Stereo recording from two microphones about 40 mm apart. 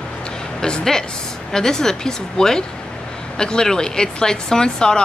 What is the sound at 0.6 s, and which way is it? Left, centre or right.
Speech, centre.